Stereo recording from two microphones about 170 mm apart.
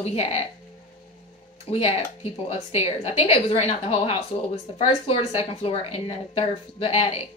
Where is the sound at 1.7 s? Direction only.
35° left (ahead or behind).